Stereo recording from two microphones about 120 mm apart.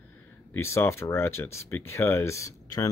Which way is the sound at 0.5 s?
20° left (ahead or behind).